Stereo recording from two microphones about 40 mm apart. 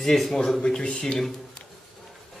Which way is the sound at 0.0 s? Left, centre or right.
Centre.